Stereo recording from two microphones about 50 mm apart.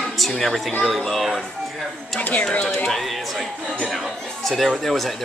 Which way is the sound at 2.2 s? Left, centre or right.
Left.